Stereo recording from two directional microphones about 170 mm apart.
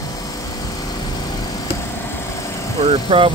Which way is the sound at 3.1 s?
30° right (ahead or behind).